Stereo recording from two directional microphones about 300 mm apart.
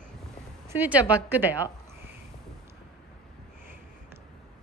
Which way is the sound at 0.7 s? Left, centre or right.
Centre.